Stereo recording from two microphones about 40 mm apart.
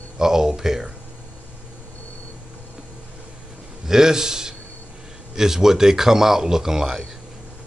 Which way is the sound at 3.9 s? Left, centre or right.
Centre.